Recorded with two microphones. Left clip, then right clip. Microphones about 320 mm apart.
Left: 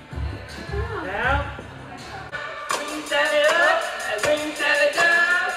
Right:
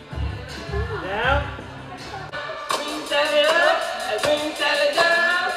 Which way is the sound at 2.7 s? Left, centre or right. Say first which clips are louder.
Right 1 dB; centre.